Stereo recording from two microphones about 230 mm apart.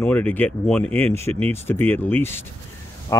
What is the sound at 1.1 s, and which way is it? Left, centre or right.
Speech, right.